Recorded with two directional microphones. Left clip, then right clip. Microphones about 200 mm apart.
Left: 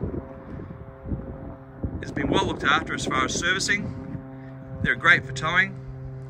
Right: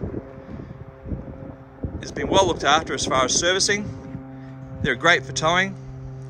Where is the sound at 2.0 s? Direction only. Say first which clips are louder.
Right 6 dB; 5° right (ahead or behind).